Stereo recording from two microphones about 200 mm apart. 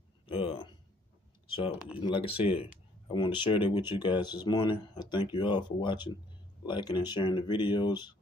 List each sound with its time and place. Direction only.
0.3 s speech: 30° left (ahead or behind)
2.0 s speech: 25° left (ahead or behind)